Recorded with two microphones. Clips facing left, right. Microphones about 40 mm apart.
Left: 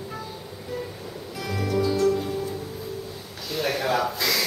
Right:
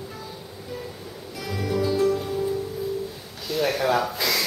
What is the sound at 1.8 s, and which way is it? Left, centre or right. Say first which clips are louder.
Music: even; centre.